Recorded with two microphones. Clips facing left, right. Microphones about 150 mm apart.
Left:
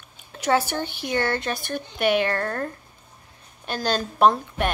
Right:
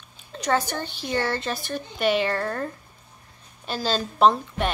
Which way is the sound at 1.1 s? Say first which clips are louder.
Left 1 dB; centre (ahead or behind).